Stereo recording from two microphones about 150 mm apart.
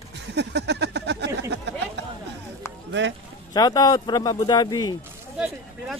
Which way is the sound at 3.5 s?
25° left (ahead or behind).